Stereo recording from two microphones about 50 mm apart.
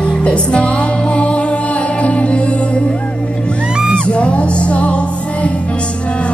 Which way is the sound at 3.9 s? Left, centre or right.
Left.